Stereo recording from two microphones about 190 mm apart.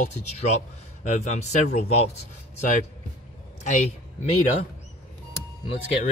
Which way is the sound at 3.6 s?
40° left (ahead or behind).